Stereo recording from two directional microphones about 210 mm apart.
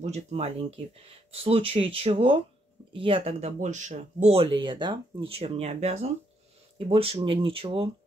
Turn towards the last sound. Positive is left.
turn(degrees=-25)  # may be behind; listen again after turning